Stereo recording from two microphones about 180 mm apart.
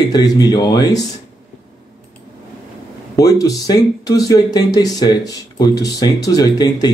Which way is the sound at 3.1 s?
20° left (ahead or behind).